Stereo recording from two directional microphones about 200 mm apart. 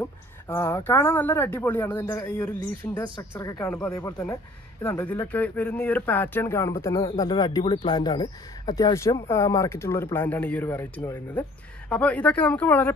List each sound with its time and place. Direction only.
0.0 s speech: 15° left (ahead or behind)
4.8 s speech: 10° left (ahead or behind)